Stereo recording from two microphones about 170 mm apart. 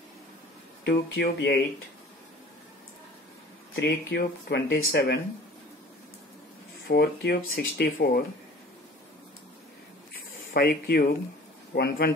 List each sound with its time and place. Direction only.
0.8 s speech: 75° left (ahead or behind)
3.8 s speech: 75° left (ahead or behind)
6.9 s speech: 70° left (ahead or behind)
10.5 s speech: 65° left (ahead or behind)